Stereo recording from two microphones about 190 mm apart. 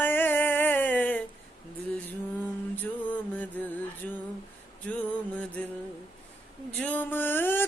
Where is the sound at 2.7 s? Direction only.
10° left (ahead or behind).